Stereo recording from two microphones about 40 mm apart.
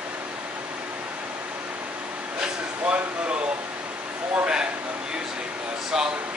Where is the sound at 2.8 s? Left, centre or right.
Right.